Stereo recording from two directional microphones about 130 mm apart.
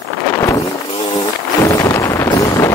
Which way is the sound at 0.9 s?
50° left (ahead or behind).